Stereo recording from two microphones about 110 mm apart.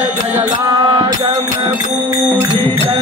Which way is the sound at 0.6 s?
35° right (ahead or behind).